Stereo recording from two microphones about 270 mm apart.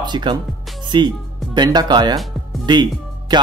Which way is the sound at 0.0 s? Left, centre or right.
Centre.